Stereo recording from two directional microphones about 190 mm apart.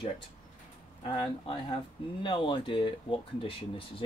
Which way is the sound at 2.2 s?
25° left (ahead or behind).